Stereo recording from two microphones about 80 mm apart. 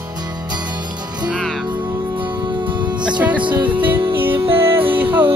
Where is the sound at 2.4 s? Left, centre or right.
Right.